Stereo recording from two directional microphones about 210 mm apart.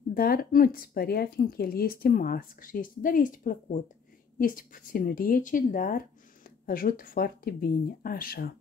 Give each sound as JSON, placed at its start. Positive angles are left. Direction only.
{"t": 0.1, "sound": "speech", "side_deg": 45}